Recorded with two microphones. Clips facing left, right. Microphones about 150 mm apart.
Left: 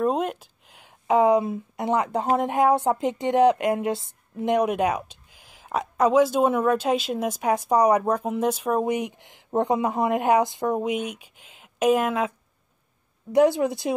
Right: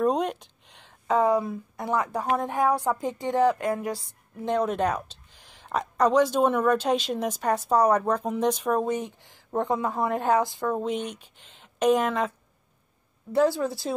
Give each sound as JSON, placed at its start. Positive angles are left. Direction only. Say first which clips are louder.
{"t": 0.0, "sound": "speech", "louder": "even", "side_deg": 5}
{"t": 13.3, "sound": "speech", "louder": "left 4 dB", "side_deg": 15}